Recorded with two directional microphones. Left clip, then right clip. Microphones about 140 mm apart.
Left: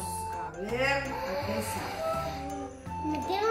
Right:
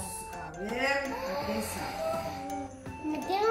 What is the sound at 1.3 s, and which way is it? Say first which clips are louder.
Music: left 1 dB; 5° left (ahead or behind).